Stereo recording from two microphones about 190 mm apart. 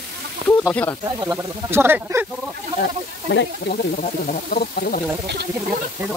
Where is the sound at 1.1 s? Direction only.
20° right (ahead or behind).